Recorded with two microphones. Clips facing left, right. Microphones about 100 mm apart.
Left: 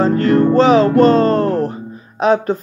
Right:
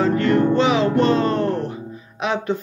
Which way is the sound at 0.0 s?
40° left (ahead or behind).